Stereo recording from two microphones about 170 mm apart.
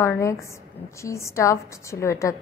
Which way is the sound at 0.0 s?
15° left (ahead or behind).